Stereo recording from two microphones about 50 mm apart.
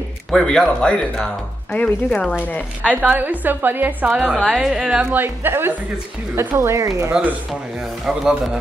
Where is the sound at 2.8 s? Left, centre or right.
Right.